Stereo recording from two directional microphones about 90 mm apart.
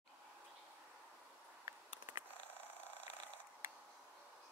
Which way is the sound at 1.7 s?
40° right (ahead or behind).